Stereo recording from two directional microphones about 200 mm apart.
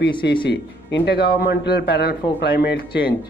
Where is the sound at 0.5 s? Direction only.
60° left (ahead or behind).